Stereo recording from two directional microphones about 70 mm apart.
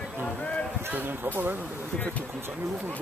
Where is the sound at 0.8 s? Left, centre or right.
Right.